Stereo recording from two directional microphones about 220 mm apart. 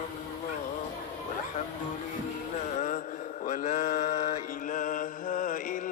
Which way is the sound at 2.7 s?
35° left (ahead or behind).